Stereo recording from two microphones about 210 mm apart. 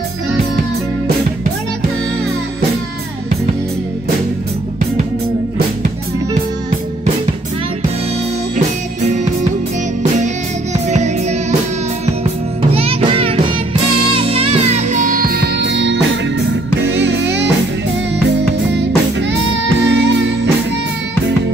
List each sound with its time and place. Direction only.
8.5 s music: 35° right (ahead or behind)
10.9 s music: 35° right (ahead or behind)
12.7 s music: 25° right (ahead or behind); by 17.5 s 60° right (ahead or behind)
18.7 s music: 55° right (ahead or behind)